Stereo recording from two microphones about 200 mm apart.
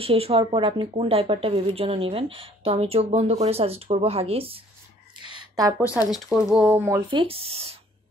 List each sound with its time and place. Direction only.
0.0 s speech: 30° right (ahead or behind)
5.6 s speech: 15° right (ahead or behind)
5.9 s speech: 15° left (ahead or behind)
6.1 s speech: centre (ahead or behind)
6.8 s speech: 20° right (ahead or behind)